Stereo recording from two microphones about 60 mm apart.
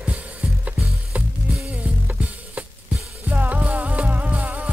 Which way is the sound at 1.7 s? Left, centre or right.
Right.